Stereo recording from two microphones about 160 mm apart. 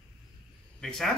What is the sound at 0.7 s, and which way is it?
Speech, 5° left (ahead or behind).